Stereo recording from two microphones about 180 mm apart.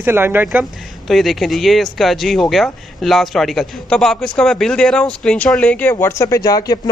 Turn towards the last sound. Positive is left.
turn(degrees=20)  # may be behind; listen again after turning